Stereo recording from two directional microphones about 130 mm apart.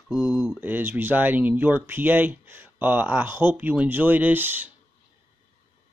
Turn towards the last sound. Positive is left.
turn(degrees=-15)  # may be behind; listen again after turning